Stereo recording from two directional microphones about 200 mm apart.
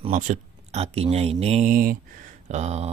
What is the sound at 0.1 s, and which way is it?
Speech, 35° right (ahead or behind).